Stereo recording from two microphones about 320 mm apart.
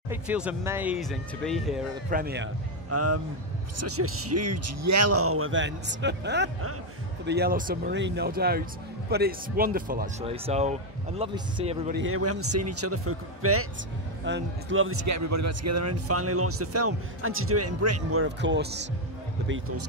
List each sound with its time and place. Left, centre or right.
0.1 s speech: centre
2.0 s speech: right
2.9 s speech: right; by 11.8 s centre
11.9 s speech: right
15.0 s speech: right